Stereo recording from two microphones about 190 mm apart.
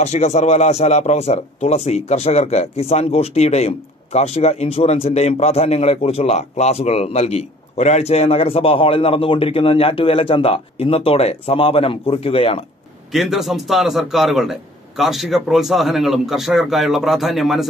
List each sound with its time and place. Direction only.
0.0 s speech: 35° left (ahead or behind)
13.1 s speech: centre (ahead or behind)